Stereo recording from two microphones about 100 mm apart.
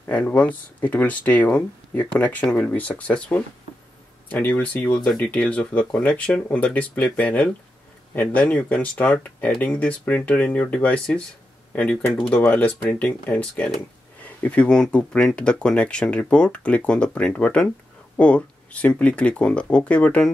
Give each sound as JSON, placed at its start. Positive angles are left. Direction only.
{"t": 0.0, "sound": "speech", "side_deg": 15}